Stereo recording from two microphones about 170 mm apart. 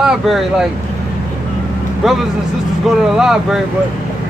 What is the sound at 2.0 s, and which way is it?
Speech, centre (ahead or behind).